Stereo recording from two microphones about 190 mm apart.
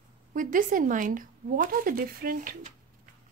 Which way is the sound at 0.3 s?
45° right (ahead or behind).